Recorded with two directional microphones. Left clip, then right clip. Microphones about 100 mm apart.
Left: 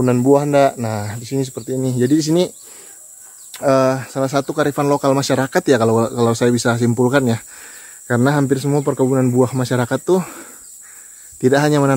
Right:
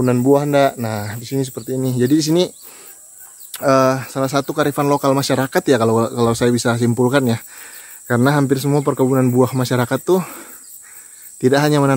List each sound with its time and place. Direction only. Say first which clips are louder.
0.0 s speech: left 1 dB; centre (ahead or behind); by 11.9 s 20° right (ahead or behind)